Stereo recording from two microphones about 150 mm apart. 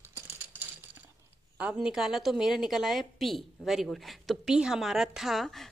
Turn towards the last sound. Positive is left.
turn(degrees=0)  # may be behind; listen again after turning